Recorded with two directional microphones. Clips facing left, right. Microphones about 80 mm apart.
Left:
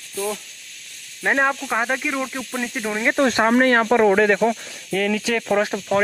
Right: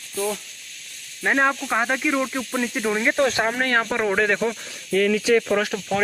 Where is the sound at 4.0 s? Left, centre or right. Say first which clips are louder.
Left 5 dB; centre.